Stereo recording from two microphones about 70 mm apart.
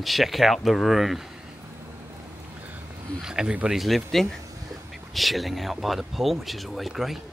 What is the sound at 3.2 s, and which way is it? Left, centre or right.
Speech, centre.